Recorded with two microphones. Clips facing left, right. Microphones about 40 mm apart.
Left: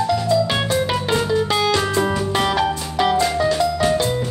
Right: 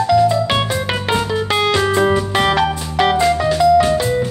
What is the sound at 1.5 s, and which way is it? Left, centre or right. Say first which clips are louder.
Music: right 3 dB; right.